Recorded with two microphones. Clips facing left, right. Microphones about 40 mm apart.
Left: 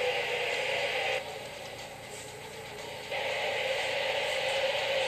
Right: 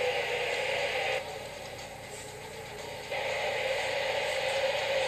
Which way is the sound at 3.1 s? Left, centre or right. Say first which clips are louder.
Even; centre.